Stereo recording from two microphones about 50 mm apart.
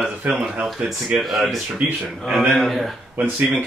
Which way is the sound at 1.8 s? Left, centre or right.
Right.